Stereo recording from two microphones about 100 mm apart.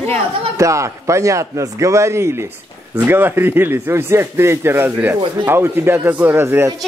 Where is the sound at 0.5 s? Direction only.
30° right (ahead or behind).